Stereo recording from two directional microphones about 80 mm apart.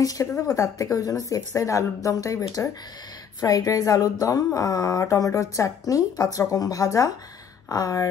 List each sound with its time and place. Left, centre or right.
0.0 s speech: left